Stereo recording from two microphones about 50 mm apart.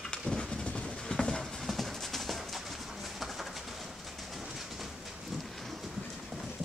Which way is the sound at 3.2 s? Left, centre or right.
Centre.